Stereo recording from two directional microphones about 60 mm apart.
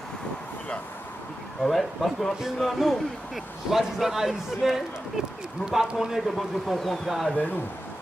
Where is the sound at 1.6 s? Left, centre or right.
Centre.